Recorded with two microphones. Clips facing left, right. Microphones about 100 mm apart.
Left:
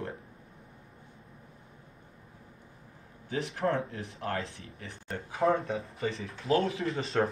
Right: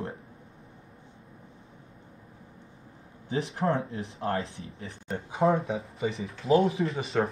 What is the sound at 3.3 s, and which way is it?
Speech, 30° right (ahead or behind).